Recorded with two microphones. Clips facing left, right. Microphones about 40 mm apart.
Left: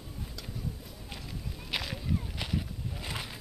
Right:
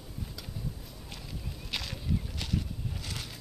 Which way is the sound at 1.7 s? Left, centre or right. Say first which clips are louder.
Left 1 dB; centre.